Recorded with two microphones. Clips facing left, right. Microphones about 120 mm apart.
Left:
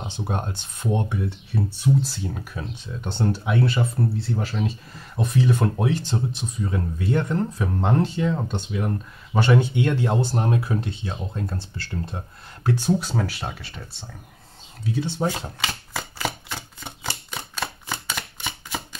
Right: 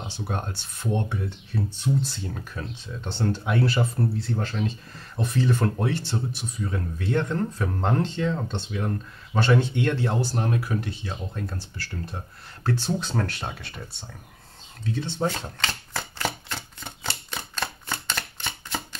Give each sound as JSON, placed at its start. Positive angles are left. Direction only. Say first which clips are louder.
{"t": 0.1, "sound": "speech", "louder": "left 3 dB", "side_deg": 20}
{"t": 14.9, "sound": "shuffling cards", "louder": "left 2 dB", "side_deg": 10}
{"t": 17.8, "sound": "a sound", "louder": "left 1 dB", "side_deg": 10}